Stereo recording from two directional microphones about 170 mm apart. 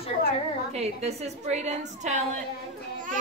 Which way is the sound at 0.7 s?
40° right (ahead or behind).